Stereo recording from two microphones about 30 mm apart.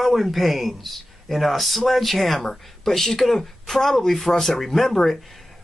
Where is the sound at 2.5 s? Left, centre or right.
Centre.